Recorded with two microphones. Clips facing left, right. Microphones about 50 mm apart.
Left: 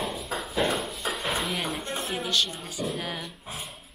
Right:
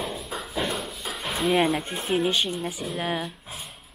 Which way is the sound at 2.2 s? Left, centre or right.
Centre.